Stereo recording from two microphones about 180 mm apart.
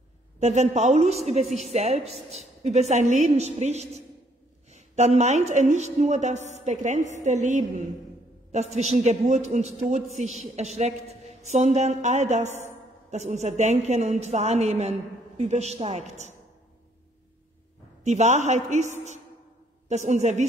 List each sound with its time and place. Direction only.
0.4 s a woman's voice: 40° right (ahead or behind)
12.4 s a woman's voice: 15° left (ahead or behind)
13.1 s a woman's voice: 40° right (ahead or behind)
18.0 s a woman's voice: 40° right (ahead or behind)